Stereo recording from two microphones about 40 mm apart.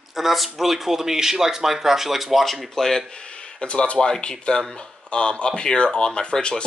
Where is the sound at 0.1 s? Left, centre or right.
Centre.